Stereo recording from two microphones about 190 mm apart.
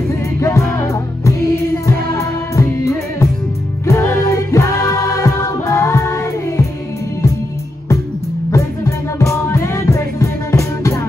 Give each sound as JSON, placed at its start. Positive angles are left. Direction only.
{"t": 0.1, "sound": "music", "side_deg": 15}
{"t": 8.5, "sound": "music", "side_deg": 15}